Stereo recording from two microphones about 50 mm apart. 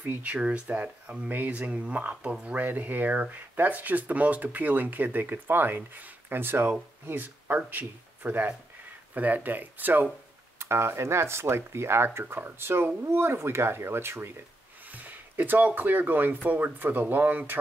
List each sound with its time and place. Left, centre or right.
0.0 s speech: right
10.6 s speech: right
14.9 s speech: right